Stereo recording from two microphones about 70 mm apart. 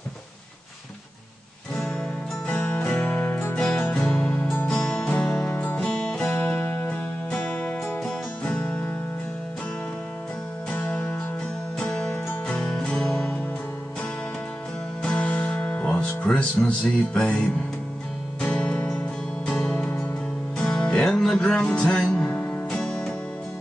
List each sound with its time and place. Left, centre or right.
2.7 s music: centre
3.5 s music: centre
6.2 s music: left
6.9 s music: centre
10.7 s music: centre
15.0 s music: centre